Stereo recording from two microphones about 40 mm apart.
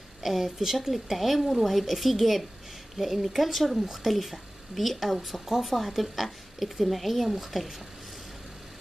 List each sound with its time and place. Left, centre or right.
0.2 s a woman's voice: centre